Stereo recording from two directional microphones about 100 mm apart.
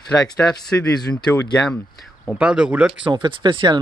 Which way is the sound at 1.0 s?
50° left (ahead or behind).